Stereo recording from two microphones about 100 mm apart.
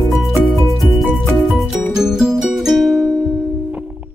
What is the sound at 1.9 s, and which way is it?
Music, 5° right (ahead or behind).